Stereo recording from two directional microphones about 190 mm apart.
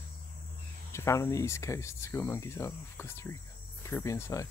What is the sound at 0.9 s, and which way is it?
Speech, 15° left (ahead or behind).